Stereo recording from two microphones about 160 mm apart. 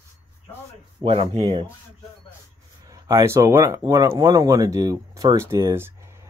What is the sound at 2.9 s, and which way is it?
Speech, 20° right (ahead or behind).